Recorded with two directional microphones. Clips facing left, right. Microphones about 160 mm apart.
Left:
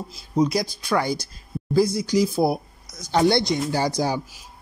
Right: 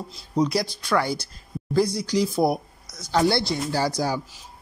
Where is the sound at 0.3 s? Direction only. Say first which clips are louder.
Left 2 dB; 10° left (ahead or behind).